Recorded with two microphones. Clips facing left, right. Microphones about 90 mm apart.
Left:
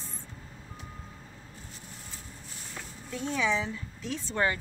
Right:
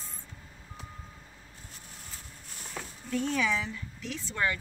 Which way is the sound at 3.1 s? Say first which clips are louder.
Even; 20° left (ahead or behind).